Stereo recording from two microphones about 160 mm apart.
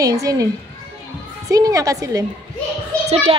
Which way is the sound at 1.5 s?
20° right (ahead or behind).